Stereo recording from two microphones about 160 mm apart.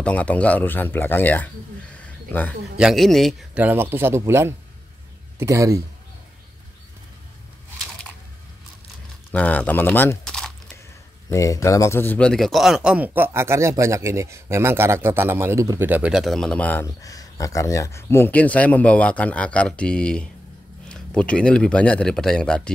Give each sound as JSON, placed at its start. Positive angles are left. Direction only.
{"t": 0.0, "sound": "speech", "side_deg": 10}
{"t": 2.0, "sound": "wild animals", "side_deg": 10}
{"t": 2.8, "sound": "speech", "side_deg": 0}
{"t": 3.6, "sound": "a man's voice", "side_deg": -15}
{"t": 9.3, "sound": "speech", "side_deg": 10}
{"t": 11.2, "sound": "a man's voice", "side_deg": 20}
{"t": 17.0, "sound": "speech", "side_deg": 20}